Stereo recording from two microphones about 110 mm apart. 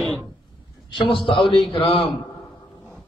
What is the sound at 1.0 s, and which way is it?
A man's voice, 55° left (ahead or behind).